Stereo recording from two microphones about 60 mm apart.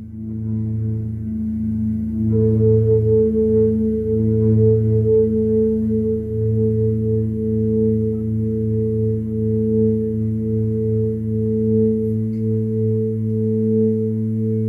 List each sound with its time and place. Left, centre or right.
2.3 s singing bowl: centre